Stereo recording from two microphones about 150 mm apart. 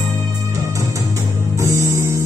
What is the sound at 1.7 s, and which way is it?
Music, 20° right (ahead or behind).